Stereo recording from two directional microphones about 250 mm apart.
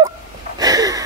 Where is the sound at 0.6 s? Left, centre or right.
Centre.